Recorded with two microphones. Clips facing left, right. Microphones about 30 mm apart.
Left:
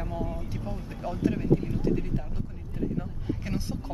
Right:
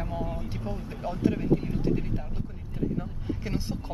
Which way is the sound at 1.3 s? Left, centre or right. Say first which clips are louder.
Even; centre.